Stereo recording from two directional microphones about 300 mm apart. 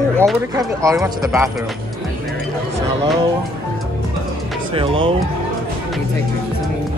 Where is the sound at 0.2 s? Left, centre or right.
Centre.